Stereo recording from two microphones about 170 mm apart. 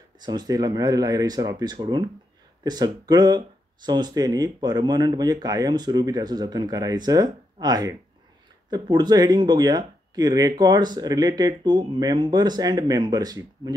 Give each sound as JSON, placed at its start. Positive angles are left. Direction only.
{"t": 0.2, "sound": "speech", "side_deg": -25}